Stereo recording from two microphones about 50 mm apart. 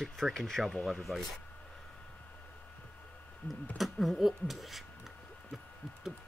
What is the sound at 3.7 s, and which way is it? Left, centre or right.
Speech, centre.